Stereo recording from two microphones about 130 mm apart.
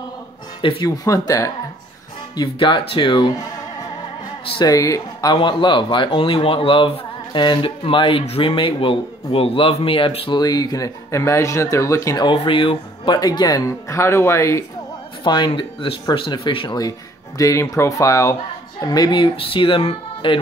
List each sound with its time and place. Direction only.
0.6 s speech: 40° left (ahead or behind)
0.8 s speech: 25° left (ahead or behind)
2.3 s speech: 35° left (ahead or behind)
4.6 s speech: 25° left (ahead or behind); by 10.4 s 40° left (ahead or behind)
10.4 s speech: 30° left (ahead or behind)
12.3 s speech: 40° left (ahead or behind); by 14.6 s 20° left (ahead or behind)
15.2 s speech: 35° left (ahead or behind)